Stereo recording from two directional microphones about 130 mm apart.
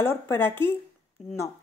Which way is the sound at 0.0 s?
20° left (ahead or behind).